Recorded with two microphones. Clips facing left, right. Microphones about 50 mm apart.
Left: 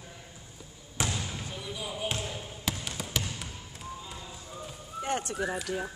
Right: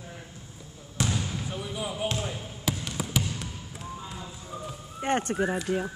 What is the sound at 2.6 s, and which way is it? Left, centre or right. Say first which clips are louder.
Trickle: right 5 dB; centre.